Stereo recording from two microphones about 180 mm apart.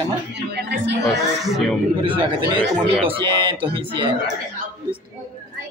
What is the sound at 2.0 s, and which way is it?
A man's voice, 30° right (ahead or behind).